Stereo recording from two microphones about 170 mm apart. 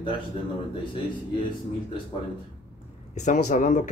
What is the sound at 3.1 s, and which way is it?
Speech, 45° left (ahead or behind).